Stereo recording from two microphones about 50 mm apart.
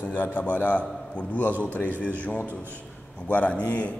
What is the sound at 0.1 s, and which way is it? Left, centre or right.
A man's voice, left.